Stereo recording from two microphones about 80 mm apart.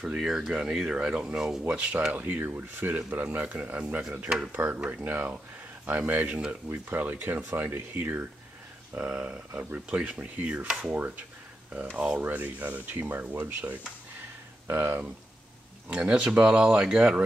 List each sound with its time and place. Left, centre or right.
0.0 s speech: centre
8.9 s speech: centre; by 15.0 s right
16.0 s speech: centre